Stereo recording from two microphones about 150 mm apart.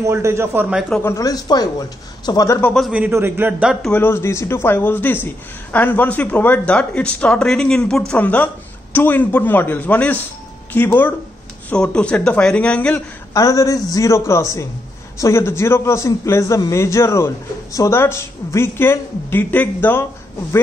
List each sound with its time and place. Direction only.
0.0 s a man's voice: 20° right (ahead or behind)
1.0 s a man's voice: 20° left (ahead or behind)
2.6 s a man's voice: 5° left (ahead or behind)
2.9 s a man's voice: 10° right (ahead or behind)
3.8 s speech: 10° left (ahead or behind)
13.3 s a man's voice: 20° left (ahead or behind)